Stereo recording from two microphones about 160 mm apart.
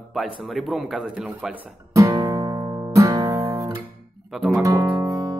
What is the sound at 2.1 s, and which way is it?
Guitar, 20° right (ahead or behind).